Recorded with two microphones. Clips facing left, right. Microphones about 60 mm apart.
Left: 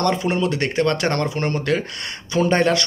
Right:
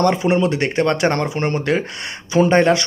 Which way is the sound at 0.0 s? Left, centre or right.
Centre.